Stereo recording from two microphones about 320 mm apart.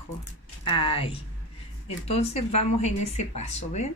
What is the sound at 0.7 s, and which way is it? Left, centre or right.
Speech, centre.